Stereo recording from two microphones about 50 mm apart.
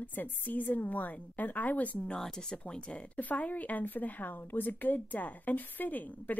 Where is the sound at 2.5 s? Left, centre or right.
Left.